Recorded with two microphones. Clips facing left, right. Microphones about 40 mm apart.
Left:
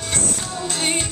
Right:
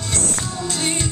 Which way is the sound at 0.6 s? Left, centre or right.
Left.